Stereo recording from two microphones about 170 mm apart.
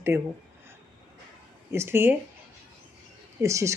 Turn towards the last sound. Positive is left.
turn(degrees=-15)  # may be behind; listen again after turning